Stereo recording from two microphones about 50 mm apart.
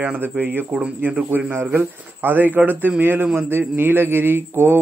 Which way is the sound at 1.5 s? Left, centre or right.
Right.